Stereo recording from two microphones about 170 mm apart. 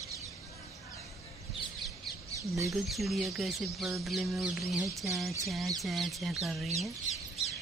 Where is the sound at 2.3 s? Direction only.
20° right (ahead or behind).